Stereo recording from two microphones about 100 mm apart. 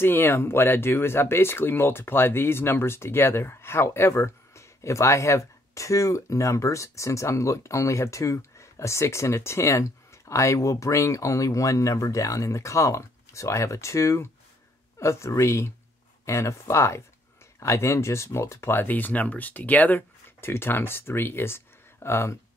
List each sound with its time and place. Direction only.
0.0 s speech: 20° left (ahead or behind)